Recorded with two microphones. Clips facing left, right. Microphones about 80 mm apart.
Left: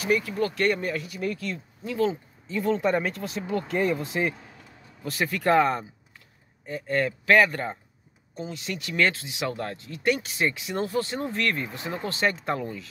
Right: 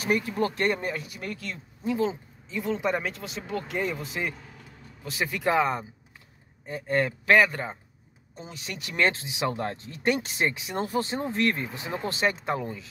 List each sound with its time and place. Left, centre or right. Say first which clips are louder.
0.0 s speech: left 1 dB; right
2.5 s speech: left 4 dB; centre
5.0 s speech: left 2 dB; centre
6.6 s speech: even; right
7.4 s speech: left 2 dB; centre
8.5 s speech: left 3 dB; right